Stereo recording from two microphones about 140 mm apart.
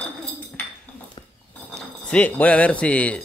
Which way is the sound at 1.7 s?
10° left (ahead or behind).